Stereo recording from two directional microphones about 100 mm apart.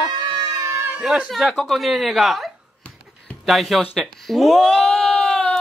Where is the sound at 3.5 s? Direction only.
Centre (ahead or behind).